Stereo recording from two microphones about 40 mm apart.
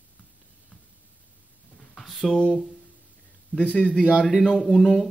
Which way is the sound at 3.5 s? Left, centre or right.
Left.